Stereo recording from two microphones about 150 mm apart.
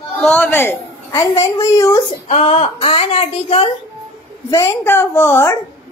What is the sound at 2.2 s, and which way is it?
A woman's voice, 45° left (ahead or behind).